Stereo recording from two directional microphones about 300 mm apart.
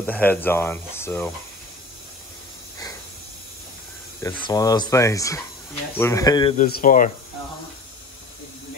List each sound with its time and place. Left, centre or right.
0.0 s speech: centre
4.2 s speech: centre
6.5 s speech: left